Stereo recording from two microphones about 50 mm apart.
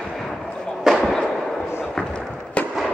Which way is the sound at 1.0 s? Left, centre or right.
Centre.